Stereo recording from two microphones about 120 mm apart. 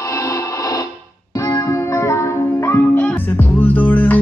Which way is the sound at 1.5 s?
25° left (ahead or behind).